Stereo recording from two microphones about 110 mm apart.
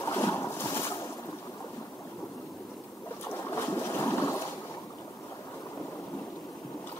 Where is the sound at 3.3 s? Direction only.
25° left (ahead or behind).